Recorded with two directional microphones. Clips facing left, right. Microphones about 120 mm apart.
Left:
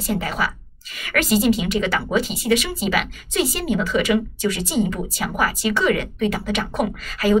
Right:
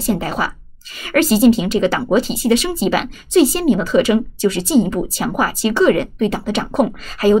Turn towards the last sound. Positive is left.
turn(degrees=-30)  # may be behind; listen again after turning